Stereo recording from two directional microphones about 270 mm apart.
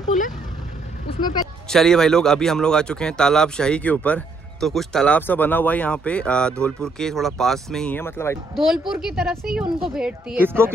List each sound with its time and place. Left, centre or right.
1.1 s speech: centre
1.7 s speech: centre